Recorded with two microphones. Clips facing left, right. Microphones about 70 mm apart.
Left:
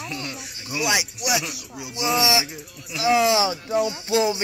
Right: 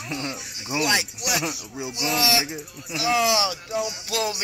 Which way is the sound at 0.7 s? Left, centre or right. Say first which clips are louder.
Even; centre.